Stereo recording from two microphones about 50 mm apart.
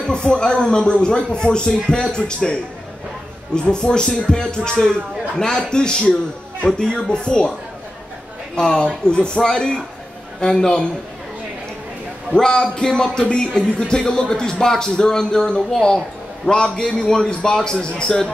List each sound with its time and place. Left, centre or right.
0.1 s a man's voice: centre
8.5 s a man's voice: centre
12.4 s a man's voice: centre